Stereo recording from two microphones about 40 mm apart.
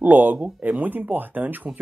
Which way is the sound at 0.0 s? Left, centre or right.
Right.